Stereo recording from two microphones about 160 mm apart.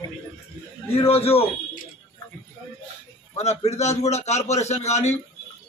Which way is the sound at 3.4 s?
45° left (ahead or behind).